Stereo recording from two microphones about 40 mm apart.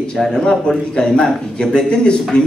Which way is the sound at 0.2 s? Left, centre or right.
Centre.